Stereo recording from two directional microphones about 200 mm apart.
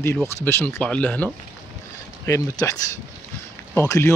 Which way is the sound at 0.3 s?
10° left (ahead or behind).